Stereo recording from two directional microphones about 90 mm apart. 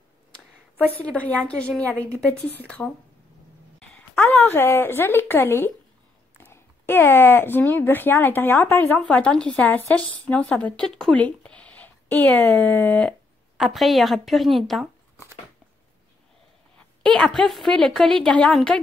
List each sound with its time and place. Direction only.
0.9 s a woman's voice: 15° left (ahead or behind)
3.9 s a woman's voice: 15° left (ahead or behind)
8.9 s a woman's voice: 15° left (ahead or behind)
11.1 s speech: 15° left (ahead or behind)
13.6 s a woman's voice: centre (ahead or behind)
16.7 s a woman's voice: 10° left (ahead or behind)